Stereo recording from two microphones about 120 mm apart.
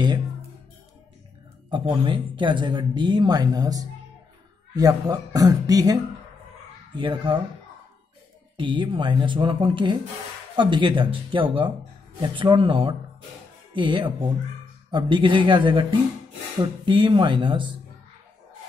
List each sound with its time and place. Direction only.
1.7 s speech: 45° right (ahead or behind)
7.0 s speech: 45° right (ahead or behind)
8.5 s speech: 45° right (ahead or behind)